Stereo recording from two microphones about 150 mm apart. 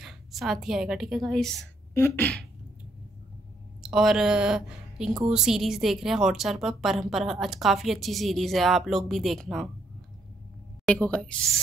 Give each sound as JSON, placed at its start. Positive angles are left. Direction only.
{"t": 0.0, "sound": "a woman's voice", "side_deg": 0}
{"t": 2.0, "sound": "a woman's voice", "side_deg": 15}
{"t": 3.8, "sound": "a woman's voice", "side_deg": 0}
{"t": 10.9, "sound": "a woman's voice", "side_deg": 5}